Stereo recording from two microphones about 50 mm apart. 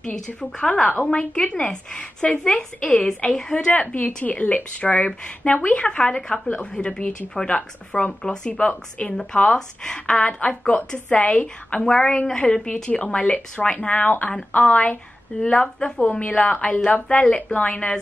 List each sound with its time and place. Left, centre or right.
0.4 s a woman's voice: centre
15.3 s a woman's voice: centre